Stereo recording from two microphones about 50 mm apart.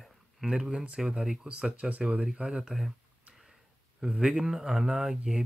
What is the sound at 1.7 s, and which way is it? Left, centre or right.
Speech, right.